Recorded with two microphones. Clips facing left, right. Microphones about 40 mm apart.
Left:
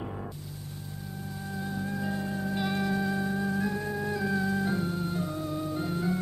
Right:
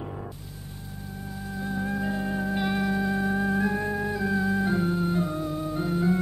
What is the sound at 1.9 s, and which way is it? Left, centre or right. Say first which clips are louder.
Music: right 4 dB; right.